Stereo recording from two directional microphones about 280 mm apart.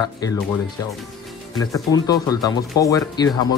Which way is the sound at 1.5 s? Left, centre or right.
Centre.